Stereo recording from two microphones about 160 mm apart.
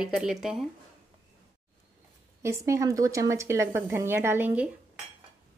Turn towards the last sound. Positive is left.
turn(degrees=-10)  # may be behind; listen again after turning